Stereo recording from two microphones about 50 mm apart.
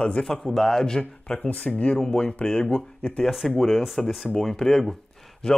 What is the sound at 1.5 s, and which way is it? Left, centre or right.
Speech, left.